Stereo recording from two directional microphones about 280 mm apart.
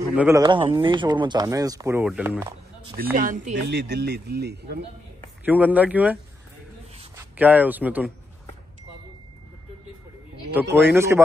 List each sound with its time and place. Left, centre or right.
0.1 s speech: centre
3.0 s speech: right
5.4 s speech: centre
7.2 s speech: centre
10.5 s speech: centre